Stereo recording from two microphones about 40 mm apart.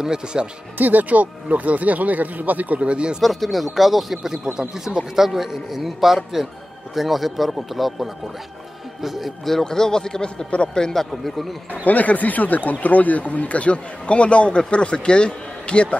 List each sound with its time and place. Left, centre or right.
0.0 s speech: centre
0.7 s speech: right
3.2 s a man's voice: centre
9.5 s a man's voice: centre
11.7 s a man's voice: left